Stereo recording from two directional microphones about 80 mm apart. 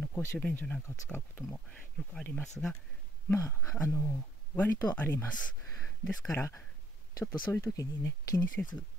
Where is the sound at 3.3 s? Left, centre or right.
Left.